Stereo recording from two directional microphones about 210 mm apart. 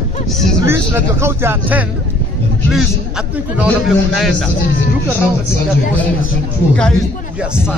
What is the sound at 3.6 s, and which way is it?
Speech, centre (ahead or behind).